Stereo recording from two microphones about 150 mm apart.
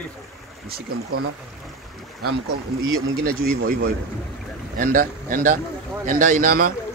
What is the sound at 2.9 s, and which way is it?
Speech, 85° right.